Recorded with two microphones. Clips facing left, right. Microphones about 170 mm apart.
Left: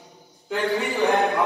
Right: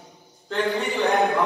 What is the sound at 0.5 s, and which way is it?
Speech, 10° left (ahead or behind).